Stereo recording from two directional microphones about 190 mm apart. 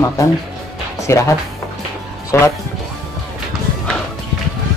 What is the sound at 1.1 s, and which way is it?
Speech, 15° left (ahead or behind).